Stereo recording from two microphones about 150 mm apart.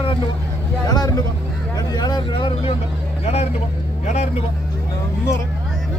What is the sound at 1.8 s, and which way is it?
Speech, 30° left (ahead or behind).